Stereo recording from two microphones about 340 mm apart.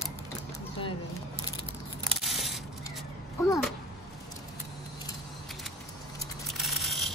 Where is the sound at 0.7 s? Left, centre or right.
Centre.